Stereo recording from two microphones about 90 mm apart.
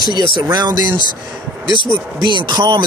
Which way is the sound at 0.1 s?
55° right (ahead or behind).